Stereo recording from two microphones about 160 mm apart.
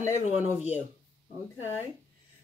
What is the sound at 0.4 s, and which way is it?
Speech, 10° right (ahead or behind).